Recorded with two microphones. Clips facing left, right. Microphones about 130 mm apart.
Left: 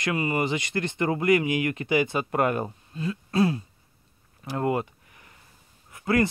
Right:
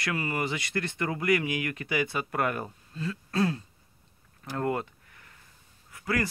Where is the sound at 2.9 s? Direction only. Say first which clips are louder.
Left 1 dB; 15° left (ahead or behind).